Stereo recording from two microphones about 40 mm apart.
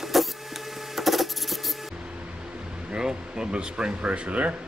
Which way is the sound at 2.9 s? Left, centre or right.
Centre.